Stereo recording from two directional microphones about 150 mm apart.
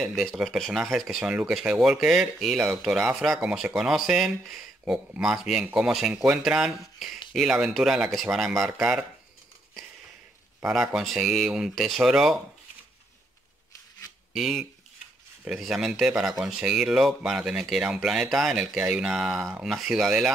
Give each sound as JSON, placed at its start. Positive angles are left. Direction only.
{"t": 0.0, "sound": "speech", "side_deg": 0}
{"t": 10.6, "sound": "speech", "side_deg": -5}
{"t": 14.3, "sound": "speech", "side_deg": 0}